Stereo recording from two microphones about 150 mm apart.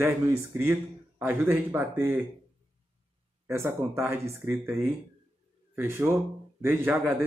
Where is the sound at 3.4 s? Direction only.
15° right (ahead or behind).